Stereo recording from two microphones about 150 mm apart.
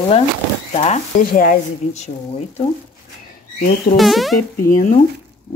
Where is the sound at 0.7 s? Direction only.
50° left (ahead or behind).